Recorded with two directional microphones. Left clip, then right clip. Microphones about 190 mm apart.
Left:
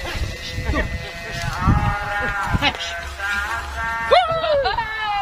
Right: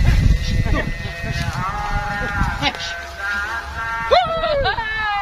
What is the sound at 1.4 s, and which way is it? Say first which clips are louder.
Music: left 2 dB; 50° left (ahead or behind).